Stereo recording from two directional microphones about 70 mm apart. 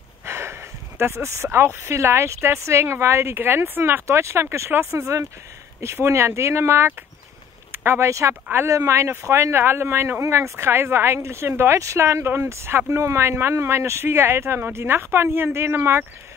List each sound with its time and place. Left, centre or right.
0.2 s speech: right